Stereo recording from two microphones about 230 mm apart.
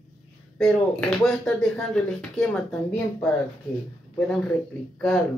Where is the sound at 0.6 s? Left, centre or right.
Centre.